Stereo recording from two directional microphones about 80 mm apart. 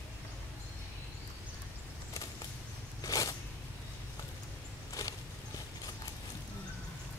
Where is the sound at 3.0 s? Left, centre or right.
Left.